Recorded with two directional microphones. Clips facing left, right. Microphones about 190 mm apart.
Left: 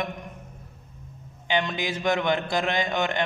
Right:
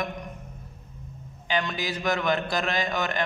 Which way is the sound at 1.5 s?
25° left (ahead or behind).